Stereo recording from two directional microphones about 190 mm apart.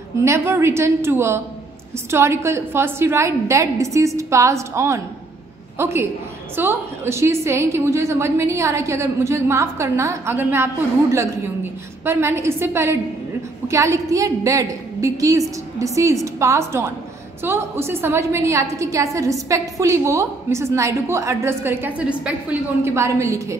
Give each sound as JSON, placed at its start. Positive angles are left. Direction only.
{"t": 0.2, "sound": "a woman's voice", "side_deg": -15}